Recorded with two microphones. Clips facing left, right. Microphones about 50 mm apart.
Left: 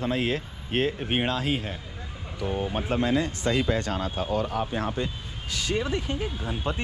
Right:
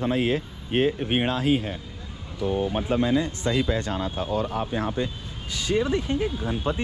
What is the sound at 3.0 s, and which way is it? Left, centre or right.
Speech, left.